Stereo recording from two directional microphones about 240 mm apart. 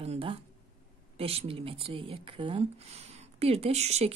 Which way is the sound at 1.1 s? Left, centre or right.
Right.